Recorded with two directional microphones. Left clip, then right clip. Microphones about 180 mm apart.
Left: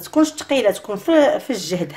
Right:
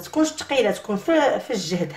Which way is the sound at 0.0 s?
45° left (ahead or behind).